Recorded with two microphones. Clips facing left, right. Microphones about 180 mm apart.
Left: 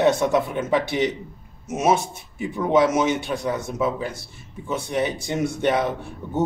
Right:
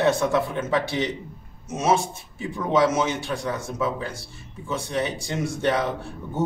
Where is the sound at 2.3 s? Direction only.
15° left (ahead or behind).